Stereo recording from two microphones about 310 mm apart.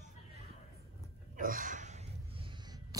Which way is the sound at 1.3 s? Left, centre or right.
Right.